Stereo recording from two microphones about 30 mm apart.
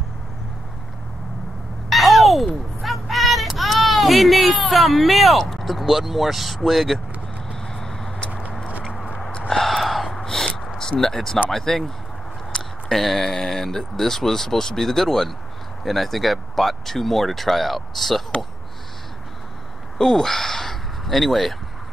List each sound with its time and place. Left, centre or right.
1.9 s a sound: centre
5.5 s speech: centre
7.6 s vehicle: centre
8.3 s a sound: right
9.5 s gasp: centre
9.8 s gasp: centre
10.1 s gasp: centre
10.8 s speech: centre
12.8 s speech: centre
20.1 s speech: centre